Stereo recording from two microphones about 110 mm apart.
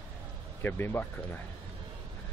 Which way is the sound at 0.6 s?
20° left (ahead or behind).